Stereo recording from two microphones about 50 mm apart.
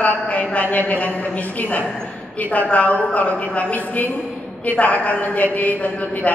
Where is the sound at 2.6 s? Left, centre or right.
Left.